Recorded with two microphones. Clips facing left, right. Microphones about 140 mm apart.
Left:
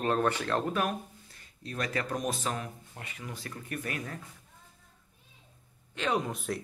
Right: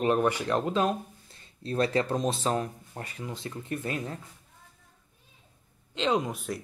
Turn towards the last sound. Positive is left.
turn(degrees=0)  # may be behind; listen again after turning